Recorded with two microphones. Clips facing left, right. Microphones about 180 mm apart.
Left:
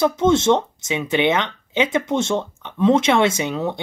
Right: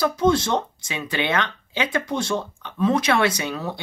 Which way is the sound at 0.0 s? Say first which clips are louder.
Left 3 dB; 25° left (ahead or behind).